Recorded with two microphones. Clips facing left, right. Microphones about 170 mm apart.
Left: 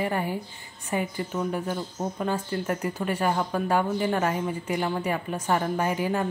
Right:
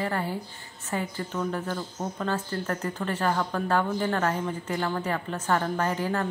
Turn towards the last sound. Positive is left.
turn(degrees=15)  # may be behind; listen again after turning